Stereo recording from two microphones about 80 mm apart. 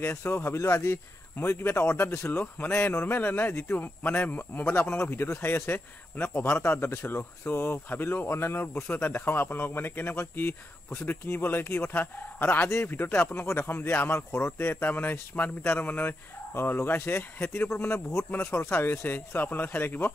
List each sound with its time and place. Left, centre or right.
0.0 s speech: left